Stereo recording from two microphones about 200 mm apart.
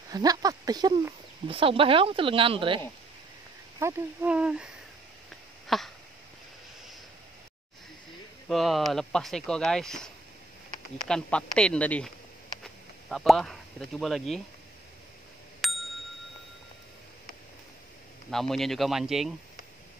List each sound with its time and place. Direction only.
0.1 s speech: 20° right (ahead or behind)
3.8 s speech: 10° right (ahead or behind)
5.7 s speech: centre (ahead or behind)
8.5 s speech: centre (ahead or behind)
13.1 s speech: centre (ahead or behind)
15.6 s bicycle bell: centre (ahead or behind)
18.3 s speech: centre (ahead or behind)